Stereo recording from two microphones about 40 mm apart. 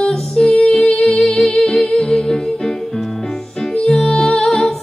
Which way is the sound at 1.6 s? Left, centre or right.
Centre.